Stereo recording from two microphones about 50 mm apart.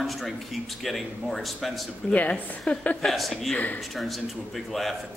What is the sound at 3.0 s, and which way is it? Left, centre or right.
Speech, centre.